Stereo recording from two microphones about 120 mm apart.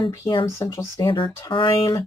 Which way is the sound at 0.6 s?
25° left (ahead or behind).